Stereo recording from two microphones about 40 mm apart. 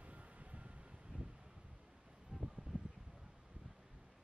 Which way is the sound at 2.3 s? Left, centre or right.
Right.